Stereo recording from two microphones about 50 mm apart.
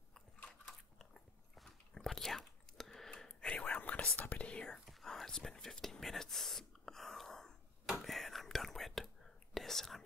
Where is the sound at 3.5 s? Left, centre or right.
Left.